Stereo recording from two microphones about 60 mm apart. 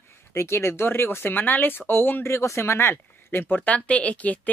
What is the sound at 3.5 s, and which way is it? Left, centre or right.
Speech, left.